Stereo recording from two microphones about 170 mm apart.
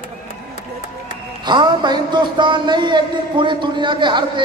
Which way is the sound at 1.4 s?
25° right (ahead or behind).